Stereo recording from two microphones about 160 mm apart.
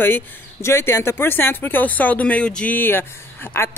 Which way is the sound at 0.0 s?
15° left (ahead or behind).